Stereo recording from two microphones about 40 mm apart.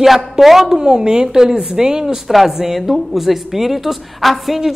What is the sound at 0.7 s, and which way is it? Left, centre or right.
A woman's voice, centre.